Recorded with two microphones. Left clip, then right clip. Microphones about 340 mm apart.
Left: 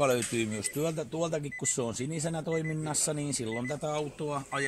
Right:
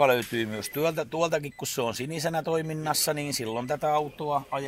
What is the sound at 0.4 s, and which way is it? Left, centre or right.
Speech, right.